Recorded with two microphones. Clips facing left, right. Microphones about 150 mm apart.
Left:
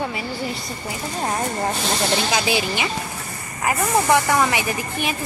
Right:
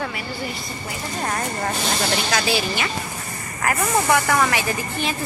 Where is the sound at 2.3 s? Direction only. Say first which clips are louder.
Left 1 dB; 15° left (ahead or behind).